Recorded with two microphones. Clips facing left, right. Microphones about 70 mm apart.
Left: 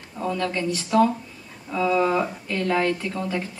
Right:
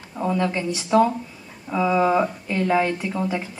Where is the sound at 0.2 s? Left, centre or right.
Centre.